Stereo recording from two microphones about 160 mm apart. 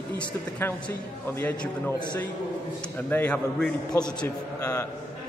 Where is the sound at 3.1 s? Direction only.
10° left (ahead or behind).